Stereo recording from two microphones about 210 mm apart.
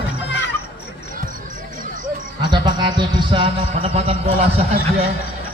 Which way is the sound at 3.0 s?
25° right (ahead or behind).